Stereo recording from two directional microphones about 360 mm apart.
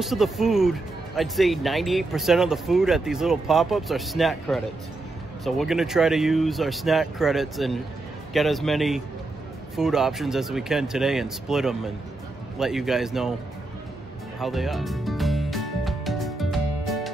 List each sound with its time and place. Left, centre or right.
0.0 s speech: centre
14.4 s music: centre